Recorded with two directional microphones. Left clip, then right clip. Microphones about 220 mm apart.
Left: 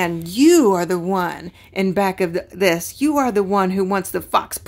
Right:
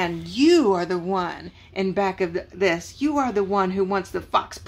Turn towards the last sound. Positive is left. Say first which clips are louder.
# left 4 dB
turn(degrees=50)  # may be behind; listen again after turning